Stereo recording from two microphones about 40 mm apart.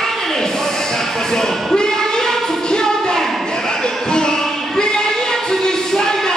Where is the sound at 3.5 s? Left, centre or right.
Centre.